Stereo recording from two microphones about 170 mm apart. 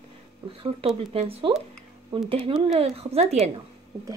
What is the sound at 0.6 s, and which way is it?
A woman's voice, 30° right (ahead or behind).